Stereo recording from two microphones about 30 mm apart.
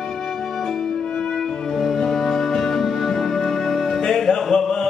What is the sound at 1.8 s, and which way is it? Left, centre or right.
Music, centre.